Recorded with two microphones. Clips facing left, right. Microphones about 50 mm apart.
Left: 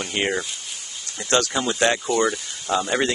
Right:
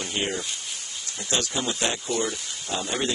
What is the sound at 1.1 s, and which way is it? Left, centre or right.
Speech, left.